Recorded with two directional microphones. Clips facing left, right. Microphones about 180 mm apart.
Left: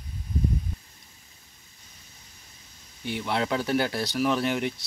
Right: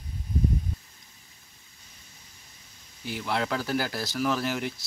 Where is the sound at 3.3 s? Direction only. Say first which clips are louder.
Left 2 dB; 20° left (ahead or behind).